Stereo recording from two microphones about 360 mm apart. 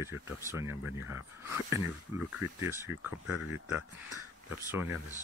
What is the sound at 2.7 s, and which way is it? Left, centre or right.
Speech, centre.